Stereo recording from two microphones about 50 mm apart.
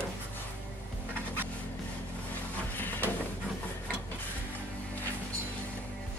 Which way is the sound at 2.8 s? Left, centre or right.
Left.